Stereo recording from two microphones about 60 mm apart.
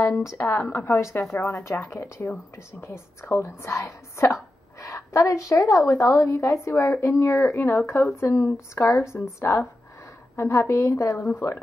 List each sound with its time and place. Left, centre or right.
0.2 s speech: left
7.5 s speech: left